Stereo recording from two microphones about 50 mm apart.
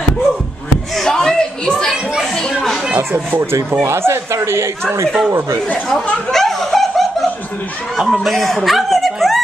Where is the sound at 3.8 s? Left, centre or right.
Right.